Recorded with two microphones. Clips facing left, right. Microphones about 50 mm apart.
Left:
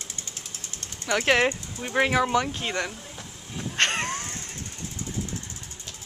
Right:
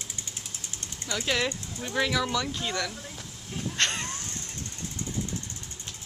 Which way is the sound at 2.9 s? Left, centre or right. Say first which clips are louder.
Even; centre.